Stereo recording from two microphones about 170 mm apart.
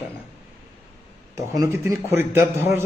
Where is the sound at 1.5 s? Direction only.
20° right (ahead or behind).